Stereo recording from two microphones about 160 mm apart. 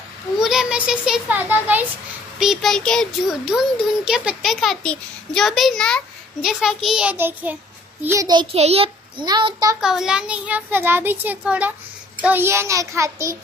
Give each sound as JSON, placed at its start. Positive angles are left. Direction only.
{"t": 0.4, "sound": "a child's voice", "side_deg": -5}
{"t": 8.5, "sound": "a child's voice", "side_deg": -40}
{"t": 9.2, "sound": "a child's voice", "side_deg": -30}
{"t": 9.8, "sound": "a child's voice", "side_deg": -5}